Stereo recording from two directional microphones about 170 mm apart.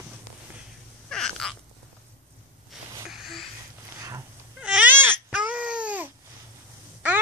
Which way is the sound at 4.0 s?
20° right (ahead or behind).